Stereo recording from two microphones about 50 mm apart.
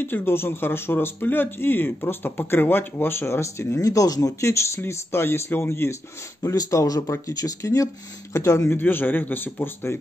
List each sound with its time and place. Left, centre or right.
0.0 s speech: left
6.4 s speech: left
8.6 s speech: left